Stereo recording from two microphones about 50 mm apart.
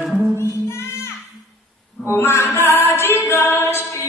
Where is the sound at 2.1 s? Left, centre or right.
Left.